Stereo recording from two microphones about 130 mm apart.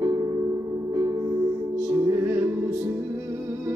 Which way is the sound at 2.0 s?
25° right (ahead or behind).